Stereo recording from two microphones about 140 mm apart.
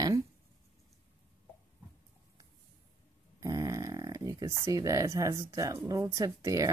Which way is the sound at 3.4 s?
20° right (ahead or behind).